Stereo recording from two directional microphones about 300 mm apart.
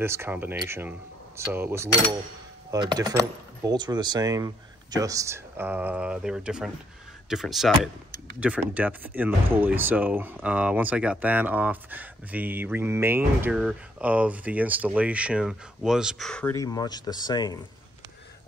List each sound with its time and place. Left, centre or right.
0.0 s speech: centre